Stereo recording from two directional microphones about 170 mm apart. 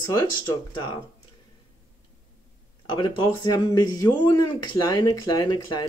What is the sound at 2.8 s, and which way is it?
Speech, 30° left (ahead or behind).